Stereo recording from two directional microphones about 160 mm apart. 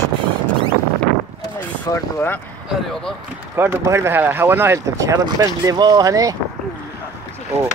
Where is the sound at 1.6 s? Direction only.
15° left (ahead or behind).